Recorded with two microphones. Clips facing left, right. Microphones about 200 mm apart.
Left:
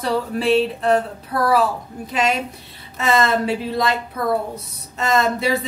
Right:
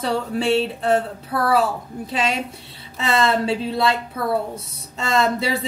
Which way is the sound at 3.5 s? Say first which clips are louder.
Even; 25° right (ahead or behind).